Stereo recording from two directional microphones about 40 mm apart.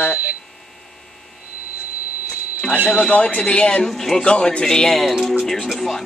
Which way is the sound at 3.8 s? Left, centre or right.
Centre.